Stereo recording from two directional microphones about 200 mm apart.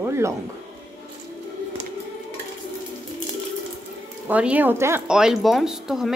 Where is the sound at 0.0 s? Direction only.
15° right (ahead or behind).